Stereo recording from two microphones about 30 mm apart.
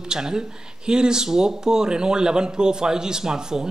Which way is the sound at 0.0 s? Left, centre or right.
Right.